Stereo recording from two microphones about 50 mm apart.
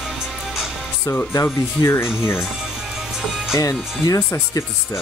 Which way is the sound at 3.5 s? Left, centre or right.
Left.